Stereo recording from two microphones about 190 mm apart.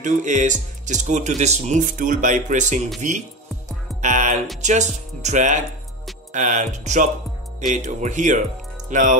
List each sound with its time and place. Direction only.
0.0 s speech: 40° right (ahead or behind)